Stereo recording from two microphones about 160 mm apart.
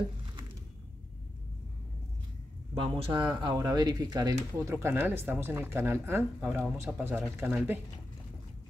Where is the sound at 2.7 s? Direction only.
35° right (ahead or behind); by 7.8 s 10° right (ahead or behind).